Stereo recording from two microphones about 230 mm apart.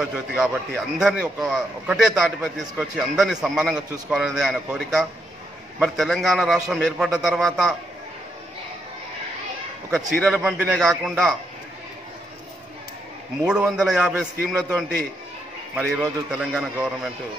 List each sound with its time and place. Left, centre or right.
0.0 s a man's voice: centre
9.8 s a man's voice: centre
13.5 s a man's voice: centre
15.7 s a man's voice: centre